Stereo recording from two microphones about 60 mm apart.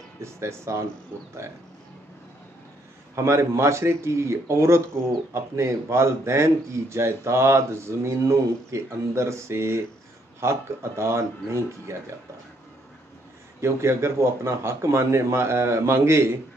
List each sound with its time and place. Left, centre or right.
0.2 s speech: right
3.2 s speech: right
13.6 s speech: right